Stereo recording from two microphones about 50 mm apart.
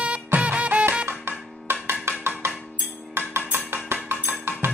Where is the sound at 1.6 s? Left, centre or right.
Right.